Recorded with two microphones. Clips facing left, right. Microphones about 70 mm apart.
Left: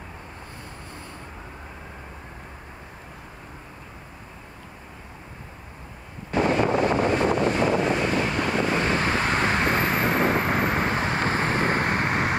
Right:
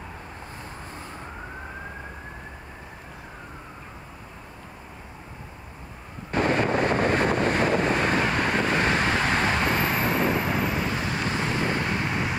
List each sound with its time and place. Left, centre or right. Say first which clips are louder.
6.4 s vehicle: left 1 dB; right
8.9 s vehicle: even; left